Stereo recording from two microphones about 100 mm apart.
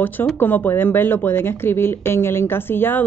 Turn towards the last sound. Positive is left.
turn(degrees=20)  # may be behind; listen again after turning